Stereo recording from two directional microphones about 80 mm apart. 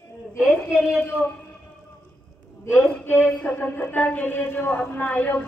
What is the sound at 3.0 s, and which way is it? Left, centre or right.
A woman's voice, centre.